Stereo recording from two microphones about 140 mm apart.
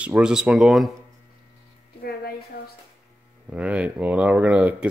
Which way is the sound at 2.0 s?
90° left.